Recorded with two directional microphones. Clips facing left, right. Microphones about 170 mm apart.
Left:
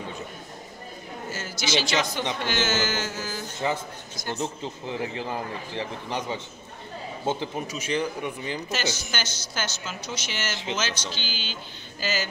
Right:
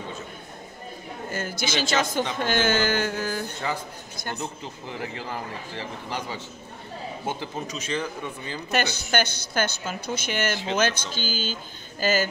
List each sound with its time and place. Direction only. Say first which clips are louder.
1.3 s a man's voice: even; 55° right (ahead or behind)
4.4 s a man's voice: left 3 dB; 20° left (ahead or behind)
9.1 s a woman's voice: right 8 dB; 55° right (ahead or behind)